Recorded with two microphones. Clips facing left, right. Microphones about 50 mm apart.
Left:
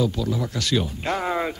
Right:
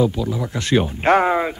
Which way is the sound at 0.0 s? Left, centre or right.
Centre.